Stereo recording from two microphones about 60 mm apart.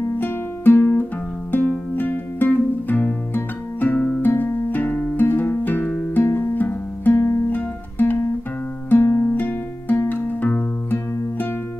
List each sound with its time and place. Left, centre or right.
0.2 s music: left